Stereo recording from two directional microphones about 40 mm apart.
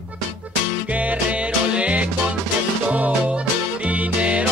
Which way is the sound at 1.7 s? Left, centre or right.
Right.